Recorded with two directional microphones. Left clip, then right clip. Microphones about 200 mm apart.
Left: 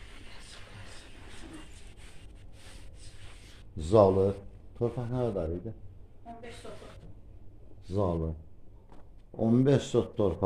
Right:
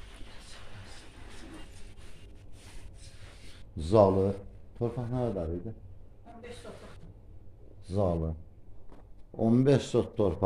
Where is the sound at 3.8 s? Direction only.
10° left (ahead or behind).